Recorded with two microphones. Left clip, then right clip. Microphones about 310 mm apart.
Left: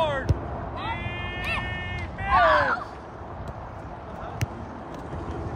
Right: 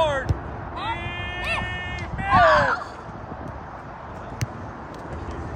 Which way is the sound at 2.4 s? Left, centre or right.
Centre.